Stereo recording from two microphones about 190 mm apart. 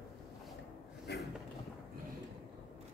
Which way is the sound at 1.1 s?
60° left (ahead or behind).